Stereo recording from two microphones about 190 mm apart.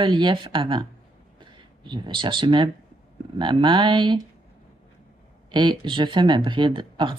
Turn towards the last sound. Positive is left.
turn(degrees=-25)  # may be behind; listen again after turning